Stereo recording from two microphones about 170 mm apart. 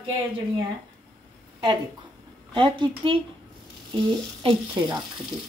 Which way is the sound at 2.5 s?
30° right (ahead or behind).